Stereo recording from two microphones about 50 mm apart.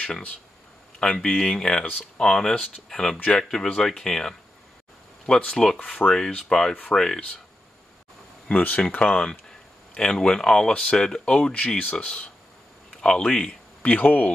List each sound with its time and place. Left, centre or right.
0.9 s speech: centre
1.9 s speech: left
2.2 s speech: centre
5.5 s speech: centre
5.8 s speech: left
6.0 s speech: centre
8.5 s speech: left
13.8 s speech: left